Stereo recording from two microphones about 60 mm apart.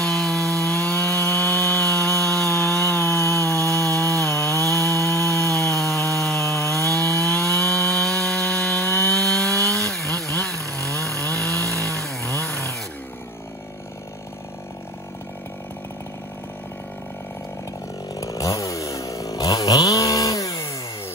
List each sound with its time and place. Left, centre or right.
0.0 s wood: centre
0.9 s wood: left
1.6 s chainsaw: centre
3.2 s chainsaw: left
3.4 s wood: centre
4.6 s chainsaw: centre
4.9 s chainsaw: left
5.4 s wood: centre
8.8 s sawing: left
9.1 s chainsaw: centre
18.2 s chainsaw: left